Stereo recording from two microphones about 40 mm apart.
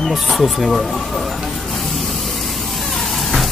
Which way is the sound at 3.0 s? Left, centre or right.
Centre.